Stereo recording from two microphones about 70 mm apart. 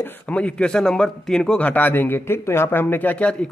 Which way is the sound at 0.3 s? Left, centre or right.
Centre.